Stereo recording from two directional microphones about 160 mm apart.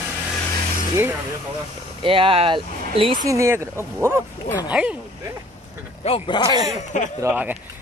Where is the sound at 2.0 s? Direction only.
35° right (ahead or behind).